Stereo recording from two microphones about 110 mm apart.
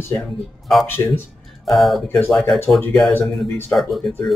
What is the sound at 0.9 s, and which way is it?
Speech, 20° left (ahead or behind).